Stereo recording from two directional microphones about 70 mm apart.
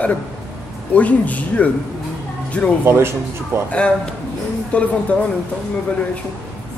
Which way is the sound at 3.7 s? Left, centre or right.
Centre.